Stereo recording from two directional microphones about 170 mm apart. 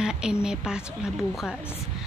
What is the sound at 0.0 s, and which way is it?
A woman's voice, 5° right (ahead or behind).